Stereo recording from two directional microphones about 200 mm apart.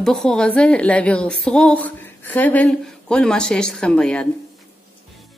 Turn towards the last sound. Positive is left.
turn(degrees=5)  # may be behind; listen again after turning